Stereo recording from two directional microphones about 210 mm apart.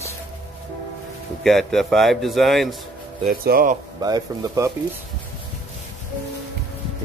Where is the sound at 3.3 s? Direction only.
45° right (ahead or behind).